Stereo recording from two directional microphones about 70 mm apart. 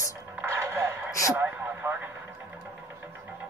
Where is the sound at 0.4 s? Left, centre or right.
Right.